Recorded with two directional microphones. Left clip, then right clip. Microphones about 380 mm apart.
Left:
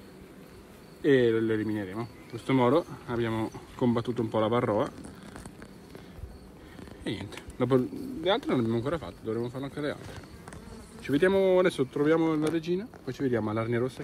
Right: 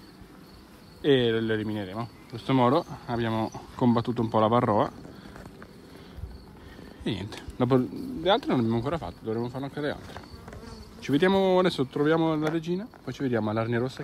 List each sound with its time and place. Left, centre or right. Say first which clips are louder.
1.0 s speech: even; centre
7.1 s speech: right 3 dB; right
11.0 s speech: right 1 dB; right